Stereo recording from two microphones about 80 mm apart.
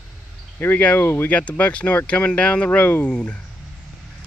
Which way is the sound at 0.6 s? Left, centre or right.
Centre.